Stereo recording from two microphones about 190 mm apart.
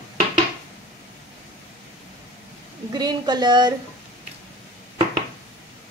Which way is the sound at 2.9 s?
20° right (ahead or behind).